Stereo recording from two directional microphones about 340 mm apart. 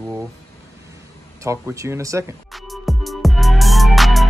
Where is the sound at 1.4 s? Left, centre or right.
Centre.